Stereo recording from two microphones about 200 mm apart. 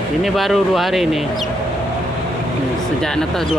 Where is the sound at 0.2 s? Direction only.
Centre (ahead or behind).